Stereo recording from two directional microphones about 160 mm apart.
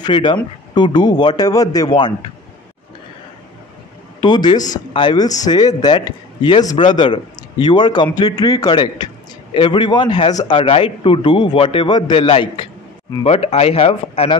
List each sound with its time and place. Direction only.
0.0 s a man's voice: 30° left (ahead or behind)
4.2 s a man's voice: 30° left (ahead or behind)